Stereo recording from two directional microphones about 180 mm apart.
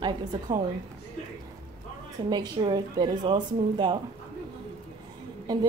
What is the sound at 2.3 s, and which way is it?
A woman's voice, 25° right (ahead or behind).